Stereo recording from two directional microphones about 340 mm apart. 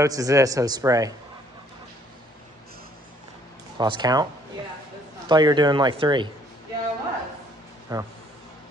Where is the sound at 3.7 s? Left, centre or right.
Centre.